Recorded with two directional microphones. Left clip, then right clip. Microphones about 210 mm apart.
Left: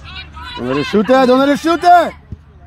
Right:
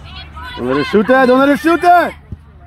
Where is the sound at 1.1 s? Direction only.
60° left (ahead or behind).